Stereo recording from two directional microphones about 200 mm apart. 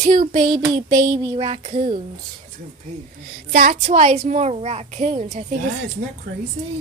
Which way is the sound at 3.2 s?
40° right (ahead or behind).